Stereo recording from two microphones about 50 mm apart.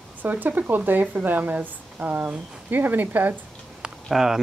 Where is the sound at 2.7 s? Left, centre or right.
Right.